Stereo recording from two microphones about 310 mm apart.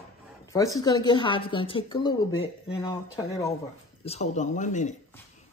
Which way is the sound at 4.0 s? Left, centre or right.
Centre.